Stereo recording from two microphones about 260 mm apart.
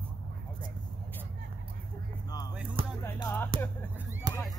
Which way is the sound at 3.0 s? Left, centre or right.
Centre.